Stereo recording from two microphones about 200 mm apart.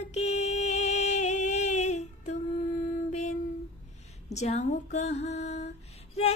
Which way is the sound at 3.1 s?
35° left (ahead or behind).